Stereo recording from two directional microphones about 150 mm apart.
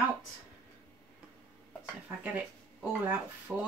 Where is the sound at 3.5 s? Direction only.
5° left (ahead or behind).